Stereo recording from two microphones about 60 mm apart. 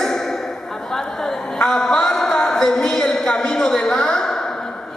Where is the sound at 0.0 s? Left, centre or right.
Centre.